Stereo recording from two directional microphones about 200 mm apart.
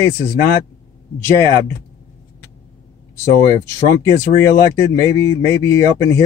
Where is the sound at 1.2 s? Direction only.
15° left (ahead or behind).